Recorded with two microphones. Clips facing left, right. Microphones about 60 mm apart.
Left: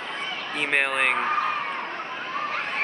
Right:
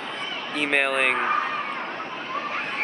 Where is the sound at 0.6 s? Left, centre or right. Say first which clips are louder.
Right 1 dB; centre.